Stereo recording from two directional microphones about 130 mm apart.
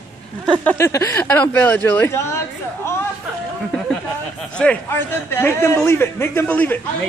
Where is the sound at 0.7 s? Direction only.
25° left (ahead or behind).